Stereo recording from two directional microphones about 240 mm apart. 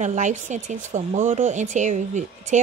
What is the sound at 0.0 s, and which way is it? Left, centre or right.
Speech, right.